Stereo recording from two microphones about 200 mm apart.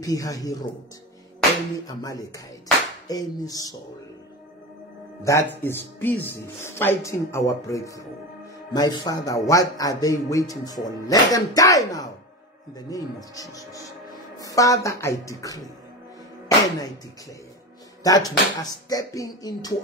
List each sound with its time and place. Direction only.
0.0 s speech: 15° left (ahead or behind)
1.9 s speech: 20° left (ahead or behind)
5.2 s speech: 10° left (ahead or behind)
18.0 s speech: 15° left (ahead or behind)